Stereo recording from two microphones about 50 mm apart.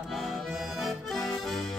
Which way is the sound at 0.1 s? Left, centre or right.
Centre.